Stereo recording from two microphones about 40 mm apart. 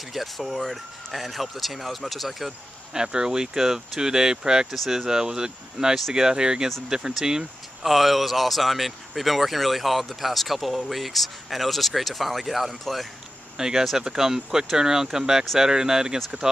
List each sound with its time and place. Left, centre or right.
0.1 s speech: centre
2.9 s speech: centre
7.8 s speech: centre
13.6 s speech: centre